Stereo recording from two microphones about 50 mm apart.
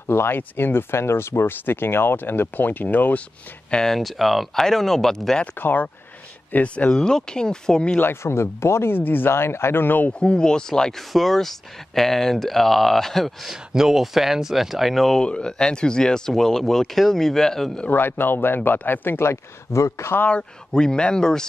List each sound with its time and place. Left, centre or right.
0.0 s speech: left
3.7 s speech: centre
5.5 s speech: left
6.5 s speech: left
6.9 s speech: centre
8.0 s speech: left
10.1 s speech: centre
15.1 s speech: centre
17.8 s speech: left
19.2 s speech: left
20.2 s speech: left